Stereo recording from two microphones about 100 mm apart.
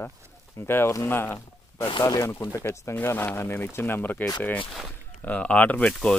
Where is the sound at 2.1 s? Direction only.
35° left (ahead or behind); by 4.2 s 20° left (ahead or behind).